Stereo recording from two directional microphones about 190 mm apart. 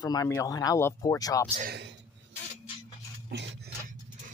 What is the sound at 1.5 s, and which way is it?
Speech, 50° right (ahead or behind).